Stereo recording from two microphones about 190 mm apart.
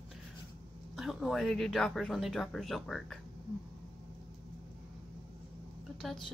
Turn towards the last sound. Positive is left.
turn(degrees=0)  # may be behind; listen again after turning